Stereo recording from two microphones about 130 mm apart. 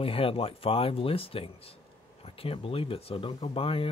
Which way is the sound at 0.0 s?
45° left (ahead or behind).